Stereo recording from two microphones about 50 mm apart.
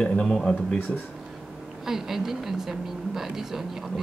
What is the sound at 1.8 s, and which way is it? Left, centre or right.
Speech, centre.